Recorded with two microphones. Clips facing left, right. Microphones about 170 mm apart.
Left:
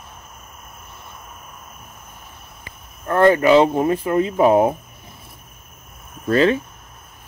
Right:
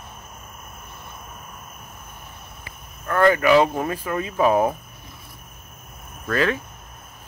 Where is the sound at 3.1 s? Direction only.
25° left (ahead or behind).